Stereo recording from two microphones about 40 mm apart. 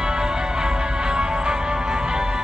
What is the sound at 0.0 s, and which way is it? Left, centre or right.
Music, centre.